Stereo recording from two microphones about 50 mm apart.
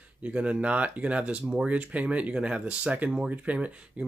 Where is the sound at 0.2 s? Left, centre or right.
Right.